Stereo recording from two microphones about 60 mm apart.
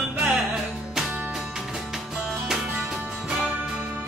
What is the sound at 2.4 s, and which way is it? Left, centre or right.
Music, centre.